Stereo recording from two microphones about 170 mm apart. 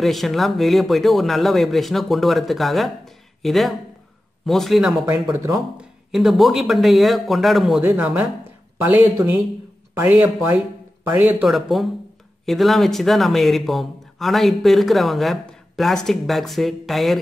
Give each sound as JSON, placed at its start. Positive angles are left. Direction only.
{"t": 0.0, "sound": "speech", "side_deg": 0}
{"t": 5.3, "sound": "speech", "side_deg": -15}
{"t": 5.8, "sound": "speech", "side_deg": 0}